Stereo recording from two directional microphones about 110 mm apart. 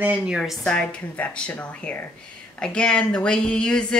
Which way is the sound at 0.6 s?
10° left (ahead or behind).